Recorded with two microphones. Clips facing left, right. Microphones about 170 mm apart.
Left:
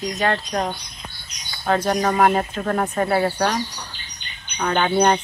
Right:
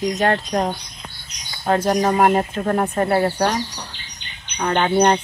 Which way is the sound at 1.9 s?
20° right (ahead or behind).